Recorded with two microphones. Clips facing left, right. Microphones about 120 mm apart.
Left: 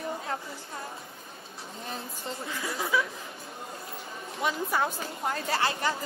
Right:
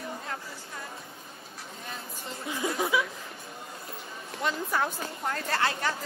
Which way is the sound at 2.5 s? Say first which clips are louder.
Right 3 dB; 20° right (ahead or behind).